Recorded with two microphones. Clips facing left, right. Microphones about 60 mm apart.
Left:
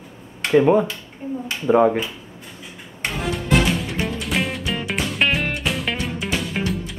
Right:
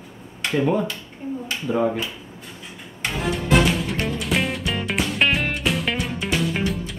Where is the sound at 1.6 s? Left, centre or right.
Left.